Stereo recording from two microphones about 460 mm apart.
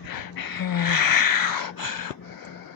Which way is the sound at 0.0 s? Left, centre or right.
Left.